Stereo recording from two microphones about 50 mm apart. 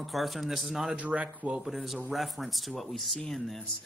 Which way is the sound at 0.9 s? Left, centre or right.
Right.